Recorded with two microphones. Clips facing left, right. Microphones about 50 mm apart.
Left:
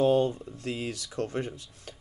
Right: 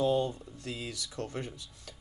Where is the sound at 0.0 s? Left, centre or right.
Left.